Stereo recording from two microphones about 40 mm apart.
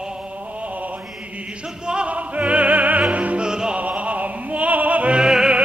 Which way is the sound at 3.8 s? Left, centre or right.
Right.